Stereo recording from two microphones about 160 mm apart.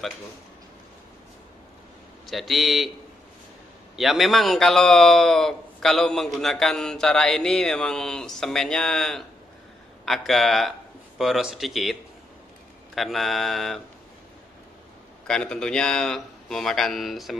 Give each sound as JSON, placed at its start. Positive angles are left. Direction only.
{"t": 2.2, "sound": "a man's voice", "side_deg": 0}
{"t": 3.9, "sound": "a man's voice", "side_deg": 0}
{"t": 15.2, "sound": "a man's voice", "side_deg": 5}